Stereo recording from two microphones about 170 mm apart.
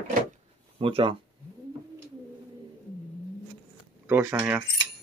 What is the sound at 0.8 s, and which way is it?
Speech, 30° right (ahead or behind).